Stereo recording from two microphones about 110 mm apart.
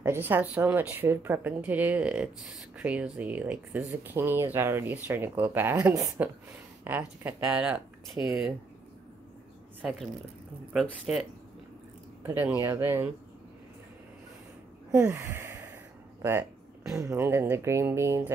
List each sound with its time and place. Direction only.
0.0 s speech: 20° right (ahead or behind)
9.8 s speech: centre (ahead or behind)
12.2 s speech: 20° right (ahead or behind)
14.9 s a sound: 20° right (ahead or behind)
16.2 s speech: 25° right (ahead or behind)